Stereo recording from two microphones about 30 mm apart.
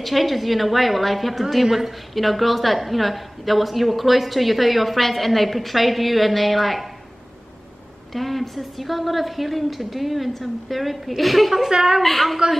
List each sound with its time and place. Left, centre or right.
0.0 s a woman's voice: centre
1.6 s a woman's voice: centre
2.1 s a woman's voice: centre
8.1 s a woman's voice: centre
11.7 s a woman's voice: centre
12.0 s a woman's voice: centre